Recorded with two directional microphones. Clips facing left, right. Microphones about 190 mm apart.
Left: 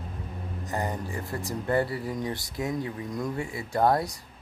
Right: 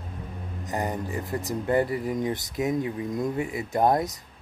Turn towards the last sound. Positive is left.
turn(degrees=-20)  # may be behind; listen again after turning